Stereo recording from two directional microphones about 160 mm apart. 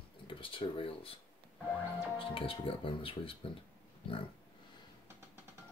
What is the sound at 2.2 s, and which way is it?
Speech, 35° left (ahead or behind).